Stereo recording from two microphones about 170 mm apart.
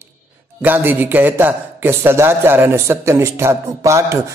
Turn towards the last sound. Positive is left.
turn(degrees=-20)  # may be behind; listen again after turning